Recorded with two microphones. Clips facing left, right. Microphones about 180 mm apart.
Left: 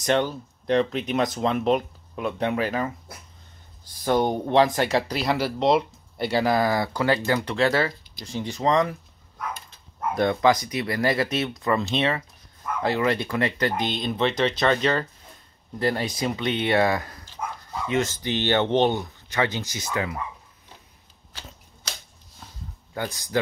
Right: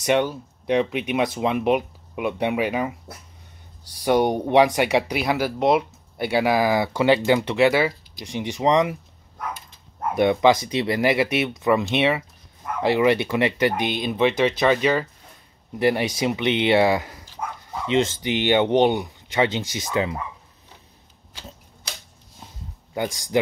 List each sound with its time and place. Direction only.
0.0 s speech: 10° right (ahead or behind)
4.0 s speech: 15° right (ahead or behind)
6.9 s speech: 25° right (ahead or behind)
7.5 s speech: 10° right (ahead or behind)
10.1 s speech: 15° right (ahead or behind)
23.3 s speech: 20° right (ahead or behind)